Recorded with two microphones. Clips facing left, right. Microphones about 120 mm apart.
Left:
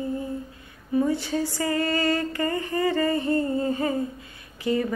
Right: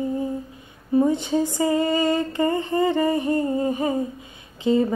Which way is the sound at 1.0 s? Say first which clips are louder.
Right 4 dB; 20° right (ahead or behind).